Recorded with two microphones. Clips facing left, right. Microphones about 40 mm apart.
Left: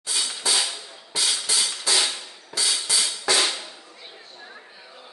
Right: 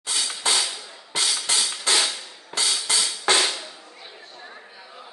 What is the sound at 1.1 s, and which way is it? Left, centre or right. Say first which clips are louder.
Music: right 1 dB; right.